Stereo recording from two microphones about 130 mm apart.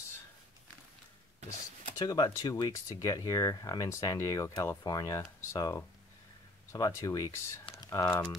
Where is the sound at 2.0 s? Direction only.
30° left (ahead or behind).